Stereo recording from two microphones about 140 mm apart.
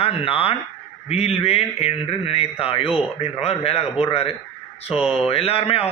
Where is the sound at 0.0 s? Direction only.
45° left (ahead or behind).